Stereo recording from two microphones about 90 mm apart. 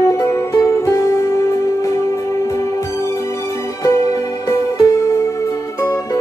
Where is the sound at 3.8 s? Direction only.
40° left (ahead or behind).